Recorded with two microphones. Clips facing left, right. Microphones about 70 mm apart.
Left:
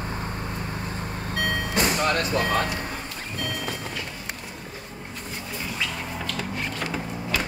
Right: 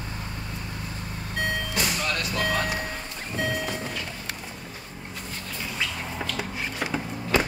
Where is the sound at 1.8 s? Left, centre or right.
Left.